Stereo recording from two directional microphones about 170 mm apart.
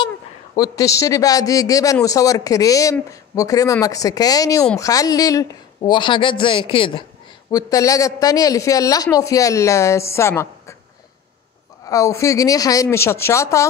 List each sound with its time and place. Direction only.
0.6 s a man's voice: 20° left (ahead or behind)
7.5 s a man's voice: 20° left (ahead or behind)
11.8 s a man's voice: 20° left (ahead or behind)